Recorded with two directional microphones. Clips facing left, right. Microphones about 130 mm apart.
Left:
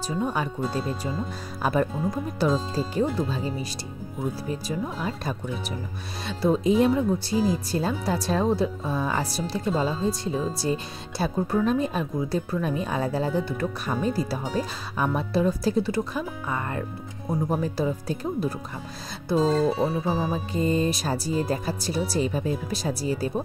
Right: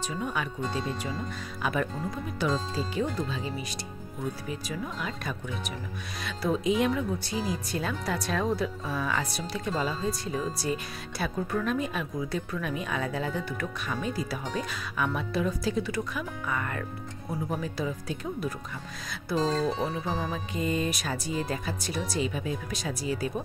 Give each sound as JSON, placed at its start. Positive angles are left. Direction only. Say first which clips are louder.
{"t": 0.2, "sound": "speech", "louder": "left 6 dB", "side_deg": 35}
{"t": 1.6, "sound": "speech", "louder": "left 6 dB", "side_deg": 35}
{"t": 19.3, "sound": "speech", "louder": "left 5 dB", "side_deg": 5}
{"t": 20.3, "sound": "speech", "louder": "left 5 dB", "side_deg": 35}